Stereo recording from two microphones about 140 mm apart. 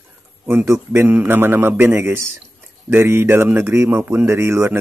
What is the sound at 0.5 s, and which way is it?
Speech, 15° right (ahead or behind).